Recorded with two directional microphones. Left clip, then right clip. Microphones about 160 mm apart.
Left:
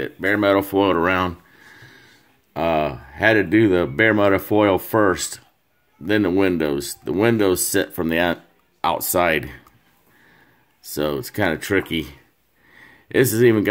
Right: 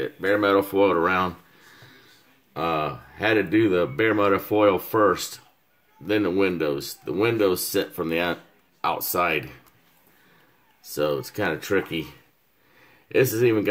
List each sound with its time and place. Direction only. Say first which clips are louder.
0.0 s speech: left 3 dB; 45° left (ahead or behind)
10.9 s speech: left 1 dB; 60° left (ahead or behind)
13.1 s speech: left 4 dB; 55° left (ahead or behind)